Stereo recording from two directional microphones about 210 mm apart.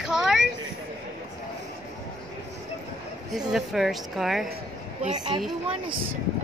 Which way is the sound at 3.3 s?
Centre (ahead or behind).